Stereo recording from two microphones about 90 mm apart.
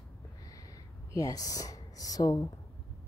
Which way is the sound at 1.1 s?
40° left (ahead or behind).